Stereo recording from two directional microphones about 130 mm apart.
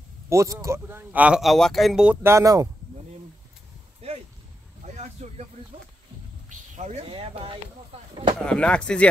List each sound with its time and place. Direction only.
0.3 s speech: 25° right (ahead or behind); by 2.1 s centre (ahead or behind)
2.2 s speech: 25° right (ahead or behind)
4.8 s vehicle: 60° right (ahead or behind)
7.1 s speech: 45° right (ahead or behind)
8.5 s speech: 10° left (ahead or behind)